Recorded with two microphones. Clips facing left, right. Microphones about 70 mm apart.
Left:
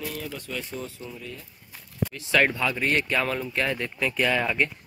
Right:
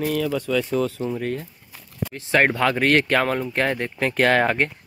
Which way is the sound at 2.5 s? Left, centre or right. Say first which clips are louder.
Right 7 dB; right.